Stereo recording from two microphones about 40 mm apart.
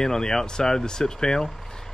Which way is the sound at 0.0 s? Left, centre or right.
Centre.